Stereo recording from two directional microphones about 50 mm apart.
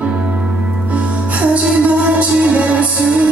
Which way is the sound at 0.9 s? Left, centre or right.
Right.